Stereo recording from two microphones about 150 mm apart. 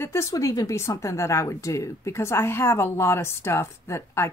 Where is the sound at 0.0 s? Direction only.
20° left (ahead or behind).